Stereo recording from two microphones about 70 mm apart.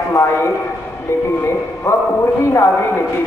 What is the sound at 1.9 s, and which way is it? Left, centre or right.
Speech, left.